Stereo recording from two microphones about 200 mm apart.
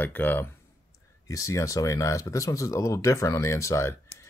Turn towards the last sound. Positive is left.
turn(degrees=15)  # may be behind; listen again after turning